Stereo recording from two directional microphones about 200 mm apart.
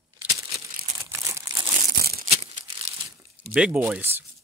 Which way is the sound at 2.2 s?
30° right (ahead or behind).